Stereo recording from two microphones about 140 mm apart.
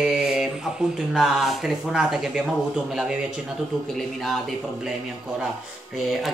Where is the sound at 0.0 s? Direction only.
5° right (ahead or behind).